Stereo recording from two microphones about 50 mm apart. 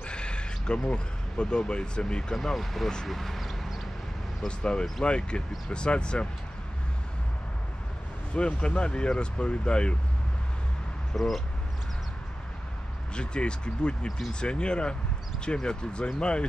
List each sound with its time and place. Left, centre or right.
0.0 s speech: centre
2.3 s speech: centre
3.1 s a sound: centre
4.5 s speech: centre
8.4 s speech: left
11.1 s speech: centre
13.1 s speech: centre